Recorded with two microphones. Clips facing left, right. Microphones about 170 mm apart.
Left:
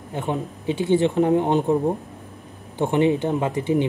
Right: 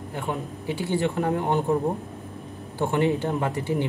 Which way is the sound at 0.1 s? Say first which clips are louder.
Left 5 dB; 20° left (ahead or behind).